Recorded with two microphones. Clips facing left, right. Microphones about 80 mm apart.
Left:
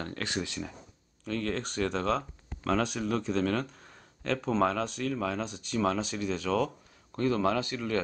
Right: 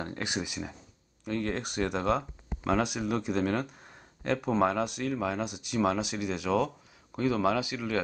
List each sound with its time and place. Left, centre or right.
0.0 s speech: centre